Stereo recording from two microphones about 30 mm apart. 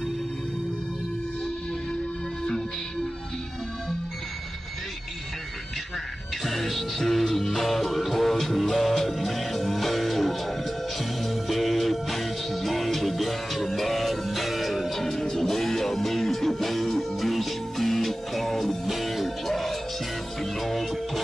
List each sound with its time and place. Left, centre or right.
6.4 s music: centre
15.2 s music: centre
15.5 s music: centre